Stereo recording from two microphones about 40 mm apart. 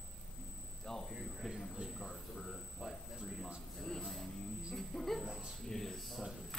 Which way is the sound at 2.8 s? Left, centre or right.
Centre.